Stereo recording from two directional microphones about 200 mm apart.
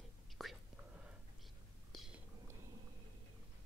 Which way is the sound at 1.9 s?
Centre (ahead or behind).